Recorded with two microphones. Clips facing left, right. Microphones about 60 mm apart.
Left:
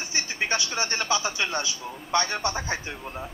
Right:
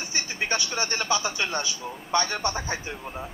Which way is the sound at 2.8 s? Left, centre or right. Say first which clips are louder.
Even; centre.